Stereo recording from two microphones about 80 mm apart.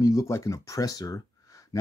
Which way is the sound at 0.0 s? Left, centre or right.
Left.